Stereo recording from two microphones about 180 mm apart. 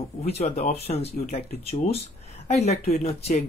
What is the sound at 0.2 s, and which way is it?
Speech, 35° left (ahead or behind).